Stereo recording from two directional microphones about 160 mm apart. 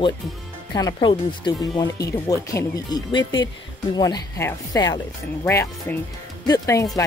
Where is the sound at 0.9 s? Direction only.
30° left (ahead or behind).